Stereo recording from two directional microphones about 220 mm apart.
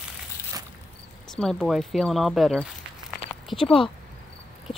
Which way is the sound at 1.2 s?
Centre (ahead or behind).